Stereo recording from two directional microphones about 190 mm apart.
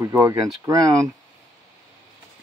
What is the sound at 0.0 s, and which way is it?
Speech, 15° right (ahead or behind).